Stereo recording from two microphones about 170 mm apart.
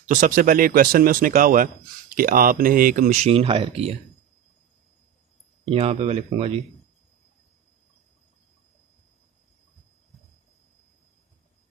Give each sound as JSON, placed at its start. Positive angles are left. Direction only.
{"t": 0.0, "sound": "speech", "side_deg": -50}
{"t": 3.3, "sound": "speech", "side_deg": -35}
{"t": 5.7, "sound": "speech", "side_deg": -35}